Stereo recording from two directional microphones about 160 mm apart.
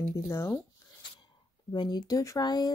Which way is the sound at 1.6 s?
25° left (ahead or behind).